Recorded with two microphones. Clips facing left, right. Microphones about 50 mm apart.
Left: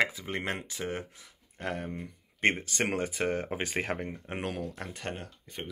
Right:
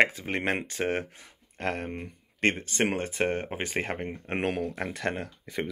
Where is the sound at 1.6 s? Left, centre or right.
Right.